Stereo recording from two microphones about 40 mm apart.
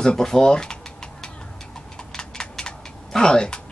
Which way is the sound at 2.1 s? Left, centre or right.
Centre.